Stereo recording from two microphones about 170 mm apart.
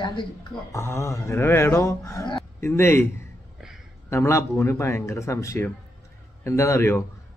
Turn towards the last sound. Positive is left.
turn(degrees=15)  # may be behind; listen again after turning